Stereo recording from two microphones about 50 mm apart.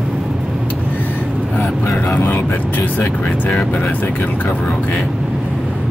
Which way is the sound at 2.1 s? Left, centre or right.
Left.